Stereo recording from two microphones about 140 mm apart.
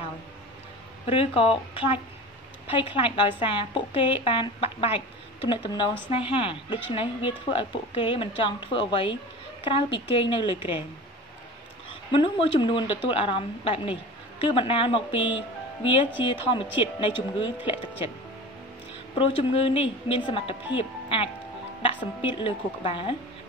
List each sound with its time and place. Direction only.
1.0 s a woman's voice: 40° left (ahead or behind)
11.9 s a woman's voice: 40° left (ahead or behind)
19.1 s a woman's voice: 40° left (ahead or behind)